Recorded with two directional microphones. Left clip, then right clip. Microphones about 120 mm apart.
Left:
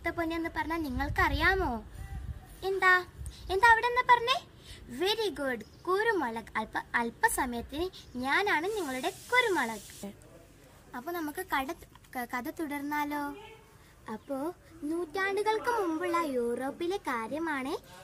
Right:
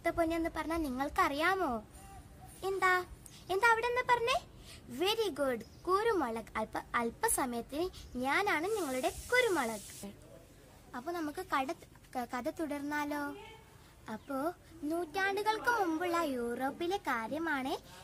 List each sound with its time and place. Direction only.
0.2 s a woman's voice: 15° right (ahead or behind)
10.0 s speech: 20° left (ahead or behind); by 13.3 s centre (ahead or behind)
14.0 s a woman's voice: 10° right (ahead or behind)